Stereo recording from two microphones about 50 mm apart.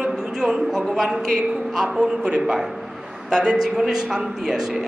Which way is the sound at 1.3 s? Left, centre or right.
Centre.